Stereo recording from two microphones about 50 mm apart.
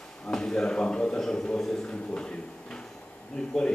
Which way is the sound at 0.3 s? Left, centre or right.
Centre.